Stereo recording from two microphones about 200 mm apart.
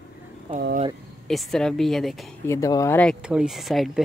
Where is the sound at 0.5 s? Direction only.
30° right (ahead or behind).